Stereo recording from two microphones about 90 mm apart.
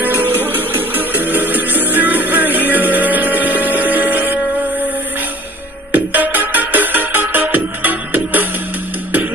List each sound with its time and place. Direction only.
0.0 s music: 20° right (ahead or behind)
5.9 s music: 20° right (ahead or behind)